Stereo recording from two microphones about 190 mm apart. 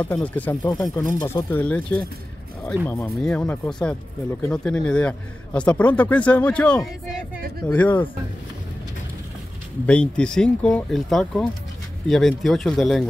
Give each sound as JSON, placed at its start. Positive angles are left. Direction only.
{"t": 0.0, "sound": "speech", "side_deg": 10}
{"t": 0.6, "sound": "speech", "side_deg": 20}
{"t": 9.8, "sound": "speech", "side_deg": 5}